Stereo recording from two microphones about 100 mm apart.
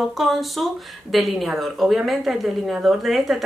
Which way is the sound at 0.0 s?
Centre (ahead or behind).